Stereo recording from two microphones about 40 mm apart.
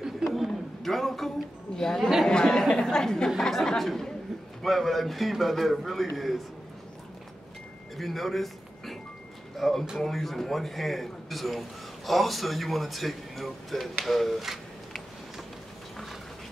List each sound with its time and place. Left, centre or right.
0.5 s a sound: centre
1.8 s speech: centre
3.3 s speech: centre
8.0 s a man's voice: centre